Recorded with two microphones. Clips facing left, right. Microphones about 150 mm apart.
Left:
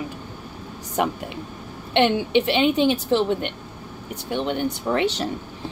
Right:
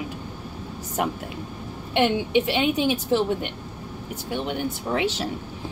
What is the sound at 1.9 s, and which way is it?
Speech, 75° left (ahead or behind).